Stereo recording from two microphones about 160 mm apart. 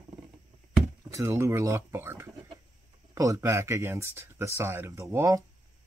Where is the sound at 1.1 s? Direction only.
15° right (ahead or behind).